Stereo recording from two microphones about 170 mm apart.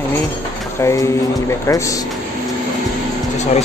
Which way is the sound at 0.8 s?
15° left (ahead or behind).